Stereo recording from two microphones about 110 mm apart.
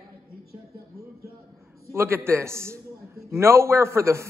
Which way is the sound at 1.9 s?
20° right (ahead or behind).